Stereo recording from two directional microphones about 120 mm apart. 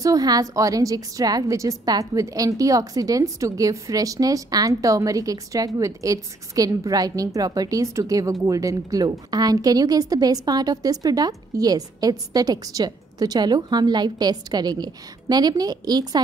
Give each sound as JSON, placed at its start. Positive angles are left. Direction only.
{"t": 0.0, "sound": "a woman's voice", "side_deg": -30}